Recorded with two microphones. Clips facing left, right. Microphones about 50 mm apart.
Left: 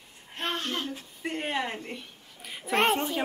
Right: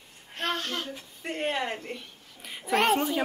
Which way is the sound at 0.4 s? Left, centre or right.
Left.